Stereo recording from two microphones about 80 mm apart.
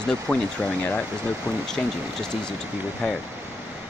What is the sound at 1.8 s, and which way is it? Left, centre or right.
Speech, centre.